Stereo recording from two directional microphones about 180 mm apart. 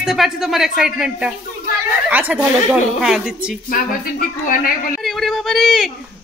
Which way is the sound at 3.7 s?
50° left (ahead or behind).